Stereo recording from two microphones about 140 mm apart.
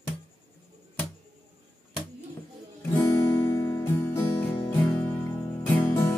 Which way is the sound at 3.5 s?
15° left (ahead or behind).